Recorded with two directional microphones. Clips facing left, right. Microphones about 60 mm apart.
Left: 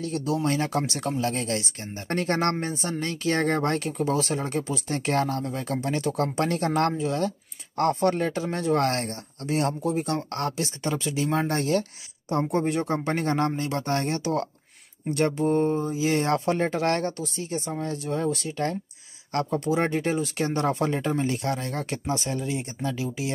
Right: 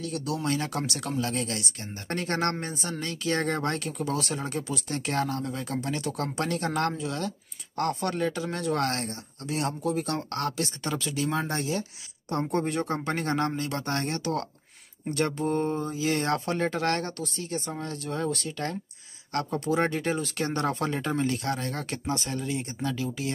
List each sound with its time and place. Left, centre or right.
0.0 s speech: left
11.4 s speech: left
12.3 s speech: centre
19.8 s speech: left